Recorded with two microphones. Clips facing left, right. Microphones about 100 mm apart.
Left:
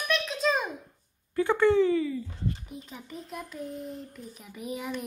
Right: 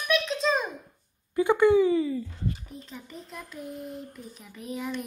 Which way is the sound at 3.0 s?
5° left (ahead or behind).